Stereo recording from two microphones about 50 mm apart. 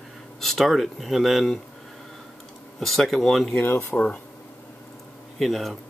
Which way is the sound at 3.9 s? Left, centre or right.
Centre.